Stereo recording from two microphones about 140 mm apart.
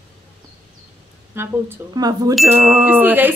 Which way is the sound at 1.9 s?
30° right (ahead or behind).